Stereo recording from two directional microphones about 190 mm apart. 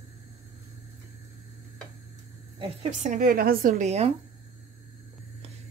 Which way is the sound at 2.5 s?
35° right (ahead or behind).